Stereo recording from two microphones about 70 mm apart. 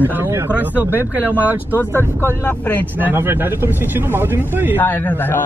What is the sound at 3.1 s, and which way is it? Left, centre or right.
Speech, right.